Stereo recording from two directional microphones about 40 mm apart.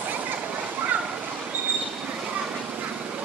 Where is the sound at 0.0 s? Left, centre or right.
Right.